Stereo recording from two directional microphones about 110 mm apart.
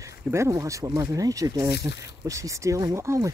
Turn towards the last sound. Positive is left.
turn(degrees=-25)  # may be behind; listen again after turning